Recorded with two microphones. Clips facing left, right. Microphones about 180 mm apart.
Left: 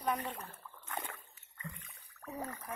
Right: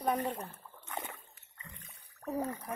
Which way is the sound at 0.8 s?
20° right (ahead or behind).